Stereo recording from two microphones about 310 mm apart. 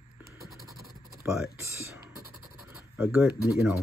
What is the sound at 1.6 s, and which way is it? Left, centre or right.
Speech, centre.